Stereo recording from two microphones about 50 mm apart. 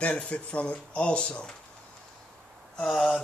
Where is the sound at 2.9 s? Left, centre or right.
Centre.